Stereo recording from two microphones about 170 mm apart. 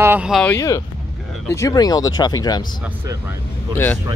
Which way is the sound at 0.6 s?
20° left (ahead or behind).